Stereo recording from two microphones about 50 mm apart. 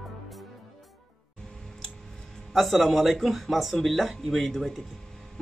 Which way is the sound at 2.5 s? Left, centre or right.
Centre.